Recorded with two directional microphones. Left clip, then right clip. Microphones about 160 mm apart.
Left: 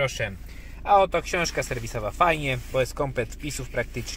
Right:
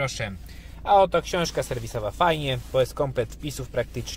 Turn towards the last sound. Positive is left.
turn(degrees=-5)  # may be behind; listen again after turning